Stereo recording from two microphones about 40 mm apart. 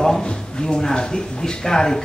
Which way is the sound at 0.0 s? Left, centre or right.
Centre.